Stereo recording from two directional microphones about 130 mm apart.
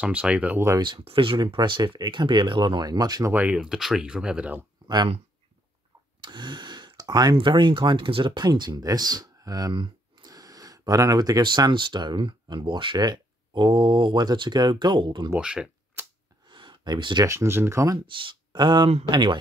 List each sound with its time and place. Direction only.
0.0 s speech: 10° right (ahead or behind)
0.7 s speech: 35° right (ahead or behind)
3.3 s speech: 10° right (ahead or behind)
4.8 s speech: 35° right (ahead or behind)
6.2 s a sound: 35° right (ahead or behind)
7.3 s speech: 40° right (ahead or behind)
15.3 s a sound: 5° right (ahead or behind)
16.4 s a sound: 35° right (ahead or behind)
17.3 s speech: 20° right (ahead or behind)
18.2 s speech: 35° right (ahead or behind)